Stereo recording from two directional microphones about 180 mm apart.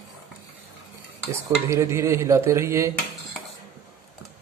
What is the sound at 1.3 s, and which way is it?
Dishes, 15° right (ahead or behind).